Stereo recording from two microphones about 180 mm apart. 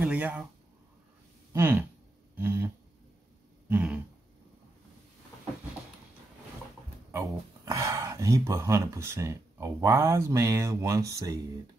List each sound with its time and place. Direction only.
0.0 s speech: 5° right (ahead or behind)
1.5 s speech: 15° right (ahead or behind)
2.3 s a sound: 15° right (ahead or behind)
3.6 s throat clearing: 10° right (ahead or behind)
7.6 s speech: 15° right (ahead or behind)